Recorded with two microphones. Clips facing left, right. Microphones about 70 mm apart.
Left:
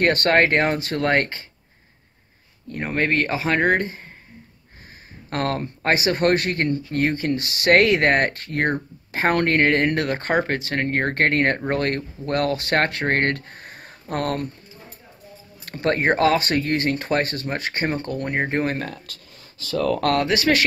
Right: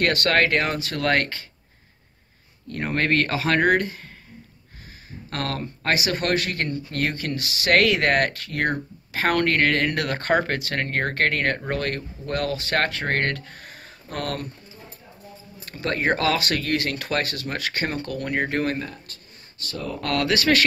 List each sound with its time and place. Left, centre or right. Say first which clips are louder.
0.0 s speech: left 3 dB; left
2.7 s speech: left 1 dB; centre
5.3 s speech: left 5 dB; left
6.9 s speech: left 5 dB; centre
7.3 s speech: left 2 dB; left
10.0 s speech: even; centre
11.1 s speech: left 4 dB; left
15.6 s speech: left 4 dB; left
18.8 s speech: left 2 dB; left
20.2 s speech: left 1 dB; centre